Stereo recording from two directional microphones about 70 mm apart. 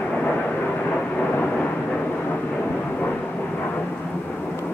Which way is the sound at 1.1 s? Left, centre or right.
Centre.